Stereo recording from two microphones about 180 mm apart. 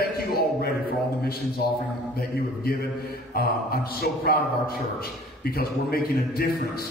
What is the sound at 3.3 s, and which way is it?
Speech, 60° left (ahead or behind).